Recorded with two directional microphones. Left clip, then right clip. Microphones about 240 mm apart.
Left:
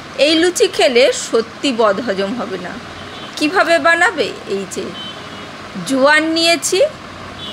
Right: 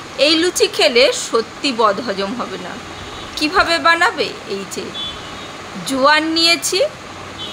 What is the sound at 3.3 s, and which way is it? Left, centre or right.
Speech, centre.